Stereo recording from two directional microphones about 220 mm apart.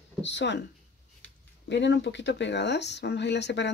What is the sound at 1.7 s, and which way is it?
Speech, 50° left (ahead or behind).